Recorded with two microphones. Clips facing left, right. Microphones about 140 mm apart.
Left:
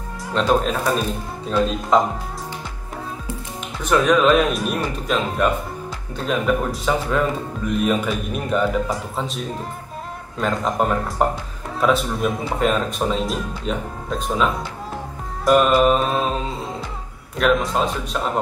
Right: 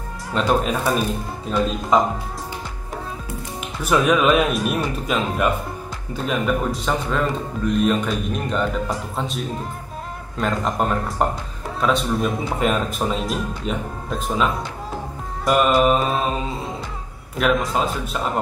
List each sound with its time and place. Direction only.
0.3 s speech: 5° right (ahead or behind)
3.8 s speech: 10° right (ahead or behind)